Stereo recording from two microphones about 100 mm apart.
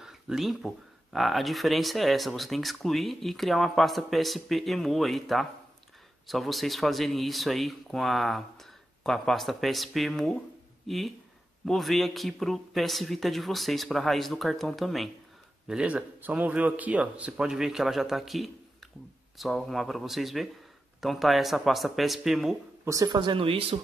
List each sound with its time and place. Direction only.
0.0 s speech: 5° right (ahead or behind)
15.6 s speech: 10° right (ahead or behind)
22.8 s a woman's voice: 35° right (ahead or behind)
23.1 s speech: 55° right (ahead or behind)